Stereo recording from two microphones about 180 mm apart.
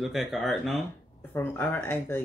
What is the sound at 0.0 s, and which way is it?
Speech, centre (ahead or behind).